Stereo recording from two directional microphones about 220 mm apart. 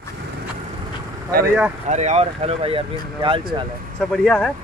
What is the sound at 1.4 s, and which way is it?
Speech, 10° right (ahead or behind).